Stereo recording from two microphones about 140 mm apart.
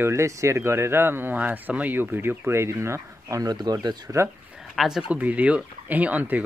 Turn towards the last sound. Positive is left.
turn(degrees=-10)  # may be behind; listen again after turning